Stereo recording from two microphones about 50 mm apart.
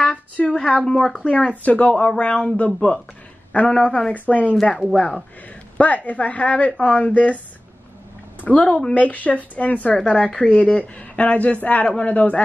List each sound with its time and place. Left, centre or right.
0.0 s speech: left
1.2 s a woman's voice: left
5.8 s a woman's voice: left
8.4 s a woman's voice: left